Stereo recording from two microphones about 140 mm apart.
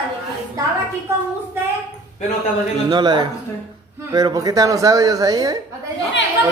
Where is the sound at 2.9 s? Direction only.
35° right (ahead or behind).